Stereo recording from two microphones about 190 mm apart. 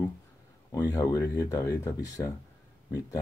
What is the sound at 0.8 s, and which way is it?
Speech, 20° left (ahead or behind).